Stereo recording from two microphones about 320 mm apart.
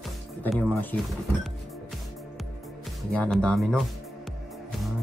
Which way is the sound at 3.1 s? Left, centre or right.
Centre.